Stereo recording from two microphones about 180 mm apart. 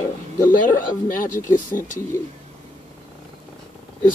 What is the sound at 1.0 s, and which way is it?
Speech, 50° left (ahead or behind).